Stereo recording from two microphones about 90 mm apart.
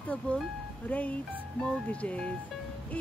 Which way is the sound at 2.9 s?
15° left (ahead or behind).